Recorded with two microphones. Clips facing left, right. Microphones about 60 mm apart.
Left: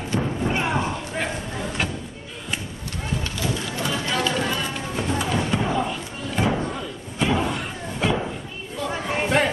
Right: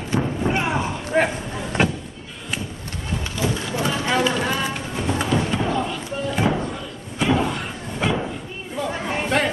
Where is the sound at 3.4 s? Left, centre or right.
Centre.